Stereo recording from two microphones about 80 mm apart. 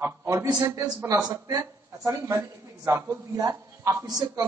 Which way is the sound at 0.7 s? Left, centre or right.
Right.